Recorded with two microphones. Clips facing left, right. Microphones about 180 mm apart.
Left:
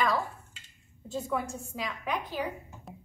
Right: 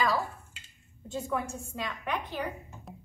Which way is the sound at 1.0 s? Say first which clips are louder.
Even; centre (ahead or behind).